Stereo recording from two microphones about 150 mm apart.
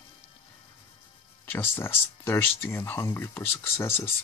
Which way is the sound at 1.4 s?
15° left (ahead or behind).